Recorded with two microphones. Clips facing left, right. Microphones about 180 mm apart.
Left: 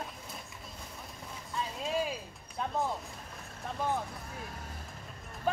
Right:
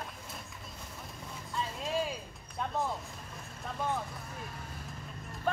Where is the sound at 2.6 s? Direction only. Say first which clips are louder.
Left 1 dB; centre (ahead or behind).